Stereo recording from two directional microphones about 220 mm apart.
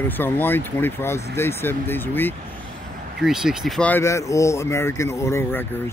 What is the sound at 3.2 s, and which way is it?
Speech, centre (ahead or behind).